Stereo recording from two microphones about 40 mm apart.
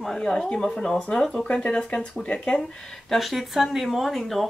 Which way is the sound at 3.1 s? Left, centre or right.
Centre.